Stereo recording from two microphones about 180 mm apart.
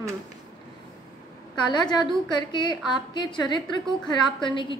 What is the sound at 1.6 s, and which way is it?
A woman's voice, 25° left (ahead or behind).